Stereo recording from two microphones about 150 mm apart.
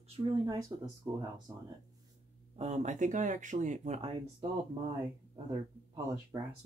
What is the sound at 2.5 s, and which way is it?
Speech, 45° right (ahead or behind).